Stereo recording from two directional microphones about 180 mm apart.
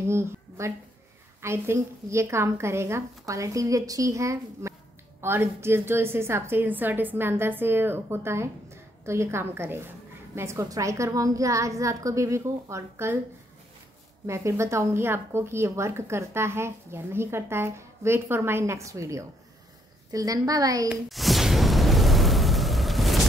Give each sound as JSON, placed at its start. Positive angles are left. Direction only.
{"t": 0.0, "sound": "a woman's voice", "side_deg": -15}
{"t": 14.2, "sound": "a woman's voice", "side_deg": -15}
{"t": 20.9, "sound": "a sound", "side_deg": 0}